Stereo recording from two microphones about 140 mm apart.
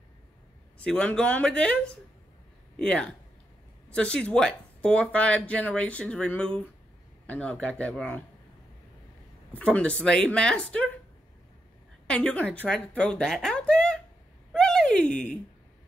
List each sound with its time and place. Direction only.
0.8 s speech: 5° left (ahead or behind)
2.8 s speech: 5° left (ahead or behind)
9.5 s speech: 10° left (ahead or behind)
12.1 s a woman's voice: 10° left (ahead or behind)
14.5 s a sound: 5° left (ahead or behind)